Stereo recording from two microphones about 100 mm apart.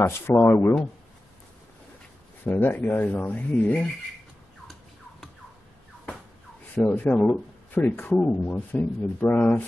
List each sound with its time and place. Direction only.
0.3 s speech: 20° left (ahead or behind)
2.4 s speech: 20° left (ahead or behind)
6.7 s speech: 15° left (ahead or behind)